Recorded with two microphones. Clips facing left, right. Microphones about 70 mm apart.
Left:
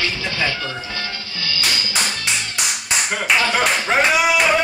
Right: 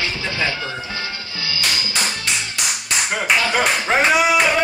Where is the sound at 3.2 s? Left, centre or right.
Centre.